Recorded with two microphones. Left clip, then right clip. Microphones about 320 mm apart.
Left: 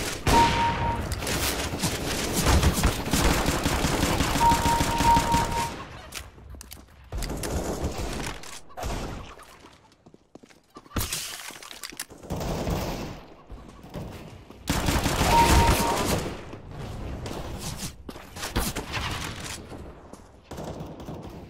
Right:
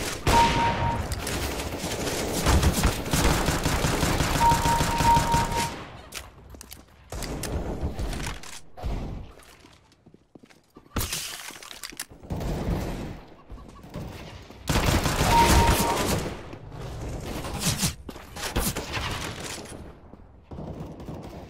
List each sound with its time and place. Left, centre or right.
0.0 s fusillade: centre
6.1 s a sound: centre
8.7 s fusillade: left
10.9 s shatter: centre
12.3 s fusillade: centre
13.9 s a sound: centre
14.7 s fusillade: centre
17.6 s a sound: centre
20.4 s gunshot: left